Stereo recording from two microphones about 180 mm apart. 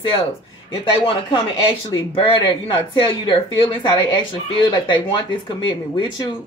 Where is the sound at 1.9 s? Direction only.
30° left (ahead or behind).